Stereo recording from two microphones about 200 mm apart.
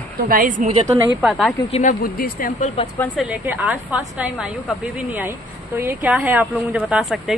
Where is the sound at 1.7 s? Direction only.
40° left (ahead or behind).